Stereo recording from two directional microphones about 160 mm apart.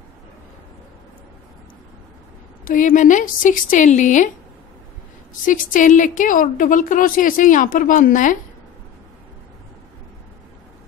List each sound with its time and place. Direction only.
2.6 s a woman's voice: 55° left (ahead or behind)
5.4 s a woman's voice: 55° left (ahead or behind)